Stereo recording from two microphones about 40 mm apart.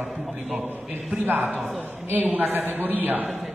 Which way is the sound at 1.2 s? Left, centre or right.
Right.